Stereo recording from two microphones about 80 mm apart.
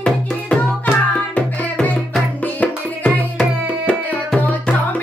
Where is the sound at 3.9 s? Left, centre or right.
Centre.